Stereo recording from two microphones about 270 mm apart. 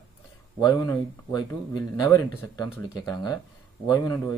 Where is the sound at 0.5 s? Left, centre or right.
Centre.